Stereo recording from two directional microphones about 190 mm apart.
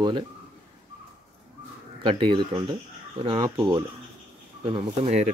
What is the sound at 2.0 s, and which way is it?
Speech, 25° right (ahead or behind).